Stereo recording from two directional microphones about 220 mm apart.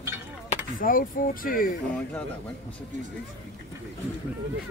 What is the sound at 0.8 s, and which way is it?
Speech, 40° left (ahead or behind).